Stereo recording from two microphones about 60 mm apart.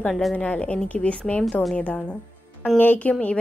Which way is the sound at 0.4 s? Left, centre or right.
Left.